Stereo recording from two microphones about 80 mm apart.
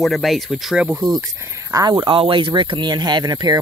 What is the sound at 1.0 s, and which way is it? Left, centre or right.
Speech, right.